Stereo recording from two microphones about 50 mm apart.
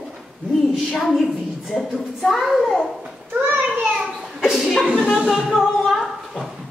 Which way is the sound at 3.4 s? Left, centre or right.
Right.